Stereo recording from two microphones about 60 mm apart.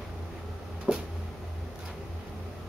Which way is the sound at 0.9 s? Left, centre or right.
Centre.